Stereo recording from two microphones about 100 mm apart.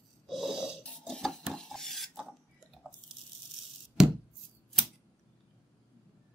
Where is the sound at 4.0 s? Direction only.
5° right (ahead or behind).